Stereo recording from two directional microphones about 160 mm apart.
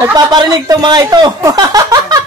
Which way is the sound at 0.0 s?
25° right (ahead or behind).